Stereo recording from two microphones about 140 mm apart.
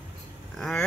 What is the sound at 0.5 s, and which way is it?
Vehicle, 5° left (ahead or behind).